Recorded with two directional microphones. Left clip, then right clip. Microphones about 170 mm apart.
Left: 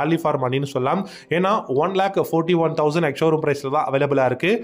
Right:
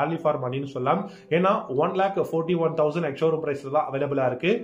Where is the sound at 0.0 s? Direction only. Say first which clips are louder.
Left 4 dB; 45° left (ahead or behind).